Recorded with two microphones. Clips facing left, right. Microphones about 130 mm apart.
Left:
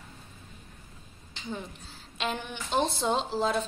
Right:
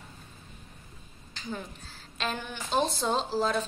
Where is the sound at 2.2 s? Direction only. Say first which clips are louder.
Left 1 dB; 20° left (ahead or behind).